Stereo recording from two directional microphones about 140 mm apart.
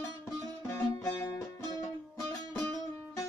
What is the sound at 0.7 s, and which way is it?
Music, 20° left (ahead or behind).